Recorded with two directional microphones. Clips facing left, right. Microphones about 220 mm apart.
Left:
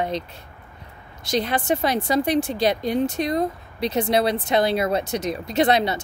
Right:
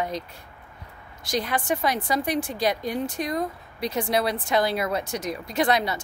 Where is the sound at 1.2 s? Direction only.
25° left (ahead or behind).